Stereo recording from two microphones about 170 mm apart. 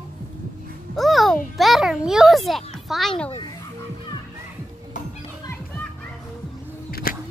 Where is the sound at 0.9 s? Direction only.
Centre (ahead or behind).